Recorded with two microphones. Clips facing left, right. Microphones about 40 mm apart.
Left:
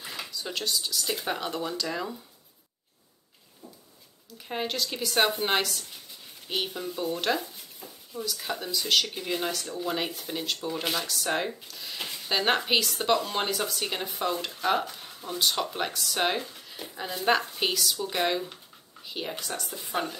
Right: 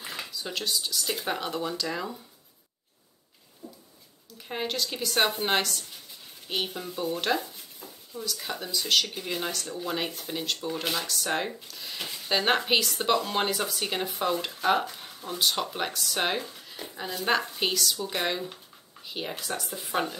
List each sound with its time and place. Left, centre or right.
0.0 s speech: centre
3.6 s a sound: left
4.4 s speech: centre